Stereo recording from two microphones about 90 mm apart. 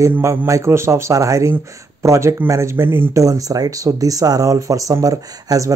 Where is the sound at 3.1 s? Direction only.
40° right (ahead or behind).